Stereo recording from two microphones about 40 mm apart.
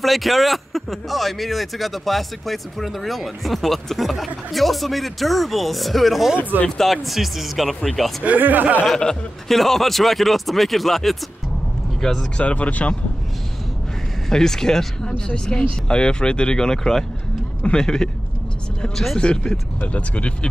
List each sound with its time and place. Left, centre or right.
0.0 s speech: centre
8.4 s speech: right
8.8 s speech: centre
12.4 s speech: left
14.3 s speech: centre
19.1 s speech: left
19.9 s speech: left